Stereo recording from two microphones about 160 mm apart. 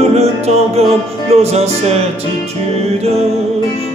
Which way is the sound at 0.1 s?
40° right (ahead or behind).